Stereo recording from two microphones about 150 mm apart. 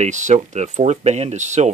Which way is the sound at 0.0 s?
50° right (ahead or behind).